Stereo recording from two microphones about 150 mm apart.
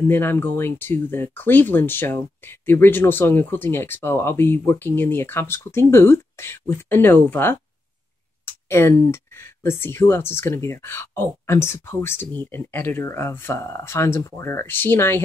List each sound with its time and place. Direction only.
0.1 s speech: 15° left (ahead or behind)